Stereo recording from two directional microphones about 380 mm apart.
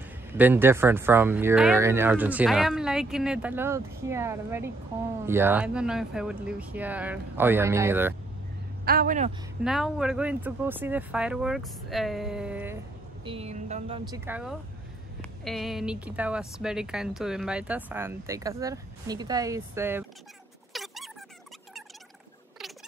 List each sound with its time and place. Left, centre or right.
0.0 s speech: centre
8.8 s speech: right
9.7 s speech: centre
13.2 s speech: centre
20.7 s dog: centre